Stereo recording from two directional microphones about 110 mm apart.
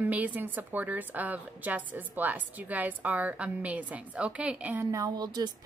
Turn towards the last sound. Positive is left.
turn(degrees=-40)  # may be behind; listen again after turning